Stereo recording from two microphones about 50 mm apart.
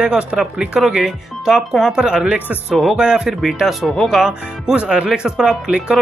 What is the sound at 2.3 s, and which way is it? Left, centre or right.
Speech, right.